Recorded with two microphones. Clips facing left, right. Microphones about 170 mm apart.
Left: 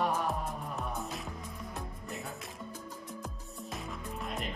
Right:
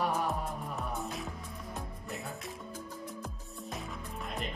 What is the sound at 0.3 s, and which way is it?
Music, centre (ahead or behind).